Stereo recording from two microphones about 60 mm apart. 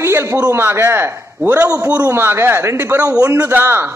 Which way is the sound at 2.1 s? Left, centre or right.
Right.